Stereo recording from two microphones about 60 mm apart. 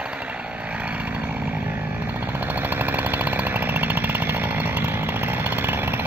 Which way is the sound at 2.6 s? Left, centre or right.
Right.